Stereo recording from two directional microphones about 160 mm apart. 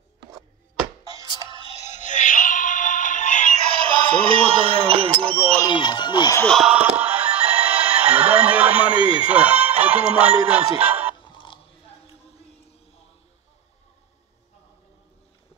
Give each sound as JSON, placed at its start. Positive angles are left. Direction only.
{"t": 1.0, "sound": "music", "side_deg": 30}
{"t": 3.8, "sound": "a sound", "side_deg": -35}
{"t": 5.7, "sound": "music", "side_deg": 30}
{"t": 6.4, "sound": "basketball bounce", "side_deg": 0}
{"t": 7.0, "sound": "music", "side_deg": -10}
{"t": 8.3, "sound": "a sound", "side_deg": -10}
{"t": 9.3, "sound": "speech", "side_deg": -10}
{"t": 10.8, "sound": "music", "side_deg": -10}
{"t": 11.2, "sound": "a sound", "side_deg": 30}